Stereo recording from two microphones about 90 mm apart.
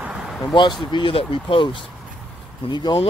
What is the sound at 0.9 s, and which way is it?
Speech, 70° left (ahead or behind).